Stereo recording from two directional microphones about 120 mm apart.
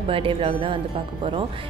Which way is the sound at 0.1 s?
50° right (ahead or behind).